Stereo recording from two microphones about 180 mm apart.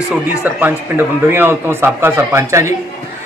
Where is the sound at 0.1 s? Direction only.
10° right (ahead or behind).